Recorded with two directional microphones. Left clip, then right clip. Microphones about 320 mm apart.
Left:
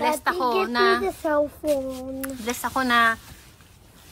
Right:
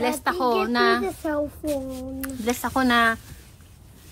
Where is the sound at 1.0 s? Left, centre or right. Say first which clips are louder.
Left 3 dB; left.